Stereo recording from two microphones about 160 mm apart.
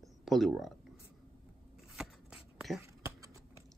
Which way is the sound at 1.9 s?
5° right (ahead or behind).